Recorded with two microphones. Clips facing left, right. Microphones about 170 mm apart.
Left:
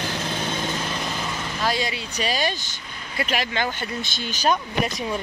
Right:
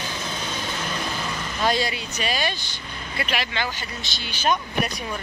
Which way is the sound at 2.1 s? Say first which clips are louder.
Left 2 dB; 40° left (ahead or behind).